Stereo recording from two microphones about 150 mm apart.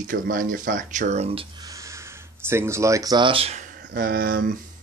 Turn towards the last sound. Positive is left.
turn(degrees=-70)  # may be behind; listen again after turning